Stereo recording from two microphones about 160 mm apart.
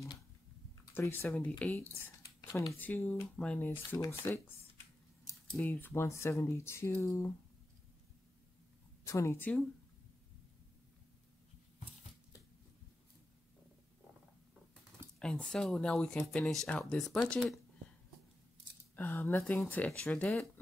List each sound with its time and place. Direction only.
0.9 s speech: 15° left (ahead or behind)
9.0 s speech: 15° left (ahead or behind)
15.1 s speech: 5° left (ahead or behind)
18.9 s speech: 15° left (ahead or behind)